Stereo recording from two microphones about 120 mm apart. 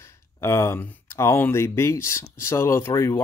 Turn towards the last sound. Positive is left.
turn(degrees=20)  # may be behind; listen again after turning